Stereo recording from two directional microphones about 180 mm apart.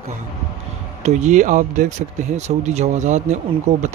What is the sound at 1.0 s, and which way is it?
Speech, 40° right (ahead or behind).